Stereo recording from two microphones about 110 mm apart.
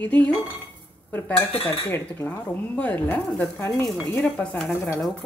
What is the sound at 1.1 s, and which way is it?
Cutlery, 20° left (ahead or behind).